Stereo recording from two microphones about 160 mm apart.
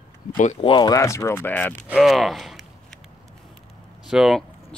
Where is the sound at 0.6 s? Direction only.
30° left (ahead or behind); by 1.7 s 10° left (ahead or behind).